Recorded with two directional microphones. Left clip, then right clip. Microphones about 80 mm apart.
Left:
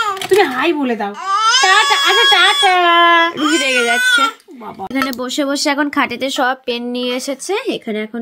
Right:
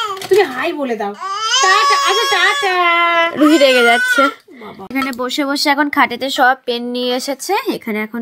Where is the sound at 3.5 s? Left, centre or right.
Right.